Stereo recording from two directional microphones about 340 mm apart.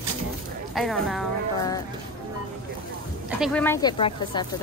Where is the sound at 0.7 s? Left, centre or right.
Centre.